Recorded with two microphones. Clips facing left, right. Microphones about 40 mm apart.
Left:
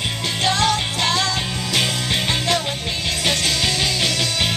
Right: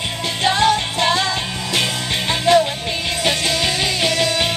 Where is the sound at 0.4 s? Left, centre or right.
Centre.